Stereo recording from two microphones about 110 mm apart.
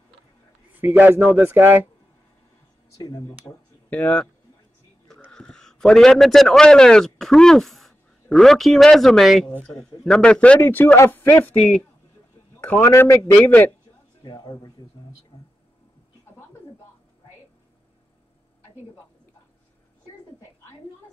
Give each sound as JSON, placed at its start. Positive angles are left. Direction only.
{"t": 0.7, "sound": "speech", "side_deg": -15}
{"t": 3.9, "sound": "a man's voice", "side_deg": 10}
{"t": 5.3, "sound": "a man's voice", "side_deg": 5}
{"t": 12.5, "sound": "a man's voice", "side_deg": 15}
{"t": 14.2, "sound": "speech", "side_deg": 40}